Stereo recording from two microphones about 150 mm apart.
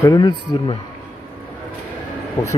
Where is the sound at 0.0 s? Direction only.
30° left (ahead or behind).